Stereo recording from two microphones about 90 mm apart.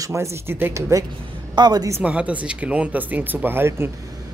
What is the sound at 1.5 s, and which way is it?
Speech, 50° right (ahead or behind).